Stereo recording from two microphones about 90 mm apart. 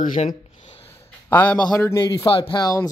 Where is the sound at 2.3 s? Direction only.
85° left.